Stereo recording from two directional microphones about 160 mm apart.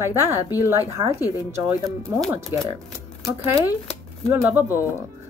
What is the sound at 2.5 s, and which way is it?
Speech, 15° right (ahead or behind).